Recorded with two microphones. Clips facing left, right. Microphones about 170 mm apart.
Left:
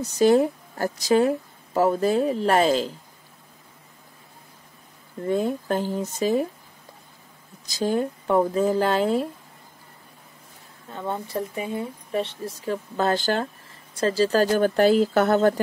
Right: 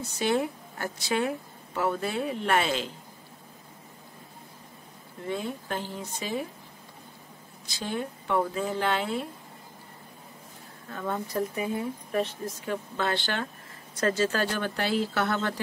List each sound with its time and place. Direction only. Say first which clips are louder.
0.0 s speech: left 9 dB; 40° left (ahead or behind)
5.2 s speech: left 9 dB; 45° left (ahead or behind)
7.6 s speech: left 9 dB; 40° left (ahead or behind)
10.9 s speech: left 2 dB; 25° left (ahead or behind); by 15.6 s 45° left (ahead or behind)